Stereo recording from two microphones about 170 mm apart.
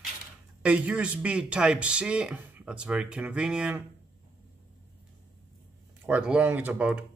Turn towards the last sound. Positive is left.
turn(degrees=-10)  # may be behind; listen again after turning